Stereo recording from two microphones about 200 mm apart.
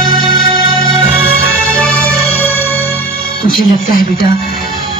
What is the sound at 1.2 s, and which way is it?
Music, 50° left (ahead or behind).